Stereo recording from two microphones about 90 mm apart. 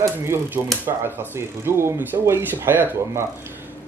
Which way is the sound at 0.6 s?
40° right (ahead or behind).